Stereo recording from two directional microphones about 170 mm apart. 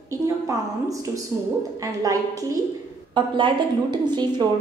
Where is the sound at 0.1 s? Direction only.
20° right (ahead or behind).